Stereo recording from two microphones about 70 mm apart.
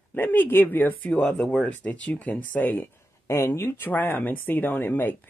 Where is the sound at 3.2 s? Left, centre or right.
Left.